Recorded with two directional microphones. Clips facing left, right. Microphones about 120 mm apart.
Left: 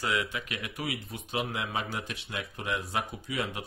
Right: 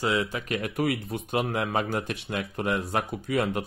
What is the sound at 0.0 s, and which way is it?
Speech, 30° right (ahead or behind).